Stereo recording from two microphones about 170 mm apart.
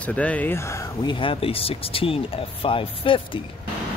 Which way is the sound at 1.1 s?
30° left (ahead or behind).